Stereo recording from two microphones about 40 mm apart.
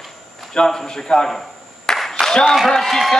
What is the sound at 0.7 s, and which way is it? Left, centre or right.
Speech, centre.